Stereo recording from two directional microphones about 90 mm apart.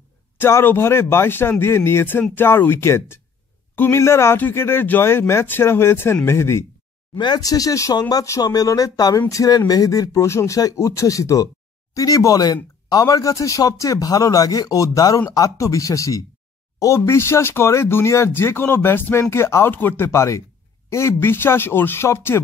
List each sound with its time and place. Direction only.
0.4 s a man's voice: 25° left (ahead or behind)
7.2 s a man's voice: 50° left (ahead or behind); by 22.4 s 30° left (ahead or behind)